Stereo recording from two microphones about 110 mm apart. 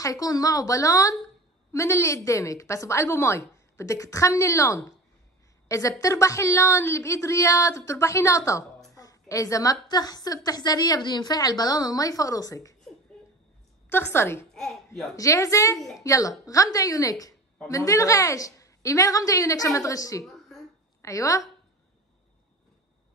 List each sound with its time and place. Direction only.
0.0 s a woman's voice: 35° left (ahead or behind)
13.8 s a woman's voice: 20° left (ahead or behind)
14.5 s a woman's voice: 5° left (ahead or behind)
15.1 s a woman's voice: 30° left (ahead or behind)
20.2 s a sound: centre (ahead or behind)
21.0 s a woman's voice: 30° left (ahead or behind)